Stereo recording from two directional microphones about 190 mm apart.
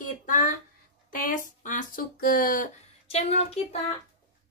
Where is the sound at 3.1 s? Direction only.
35° left (ahead or behind).